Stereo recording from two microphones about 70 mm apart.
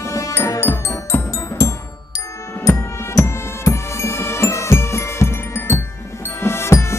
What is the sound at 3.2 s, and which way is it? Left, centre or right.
Music, left.